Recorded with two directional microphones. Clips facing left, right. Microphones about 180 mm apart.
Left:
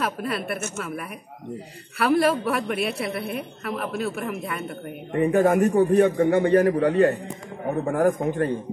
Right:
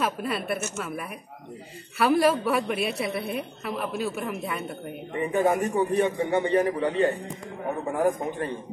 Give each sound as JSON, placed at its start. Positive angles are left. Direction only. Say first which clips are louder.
{"t": 0.0, "sound": "a man's voice", "louder": "left 1 dB", "side_deg": 0}
{"t": 2.0, "sound": "a man's voice", "louder": "left 1 dB", "side_deg": 0}
{"t": 5.1, "sound": "a man's voice", "louder": "left 5 dB", "side_deg": 45}